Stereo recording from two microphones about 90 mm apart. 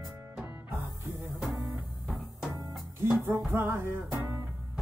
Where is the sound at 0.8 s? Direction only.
30° right (ahead or behind).